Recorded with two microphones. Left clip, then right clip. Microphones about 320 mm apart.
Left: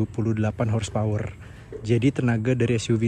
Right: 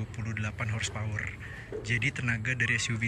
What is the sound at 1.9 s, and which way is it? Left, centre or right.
Speech, centre.